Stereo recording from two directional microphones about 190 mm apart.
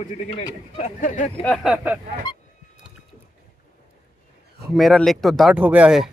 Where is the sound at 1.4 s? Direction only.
5° left (ahead or behind).